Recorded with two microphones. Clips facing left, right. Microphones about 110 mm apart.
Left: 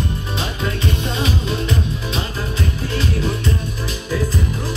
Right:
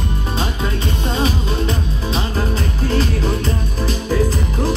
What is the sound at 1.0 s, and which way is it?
Music, 35° right (ahead or behind).